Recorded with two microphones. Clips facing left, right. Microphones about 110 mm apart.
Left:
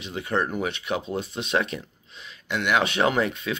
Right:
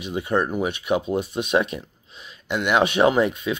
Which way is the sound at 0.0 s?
15° right (ahead or behind).